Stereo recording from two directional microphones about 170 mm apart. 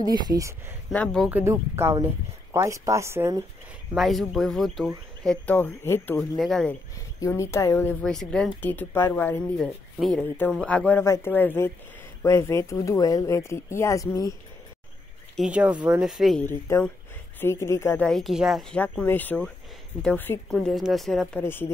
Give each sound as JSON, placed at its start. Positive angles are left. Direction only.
{"t": 0.0, "sound": "speech", "side_deg": -25}
{"t": 0.9, "sound": "speech", "side_deg": 5}
{"t": 1.3, "sound": "speech", "side_deg": -15}
{"t": 3.9, "sound": "speech", "side_deg": 0}
{"t": 7.2, "sound": "speech", "side_deg": 15}
{"t": 15.3, "sound": "speech", "side_deg": -5}
{"t": 16.4, "sound": "speech", "side_deg": 15}
{"t": 18.0, "sound": "speech", "side_deg": 0}